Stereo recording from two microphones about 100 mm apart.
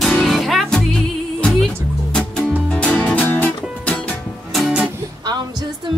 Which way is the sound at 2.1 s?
10° left (ahead or behind).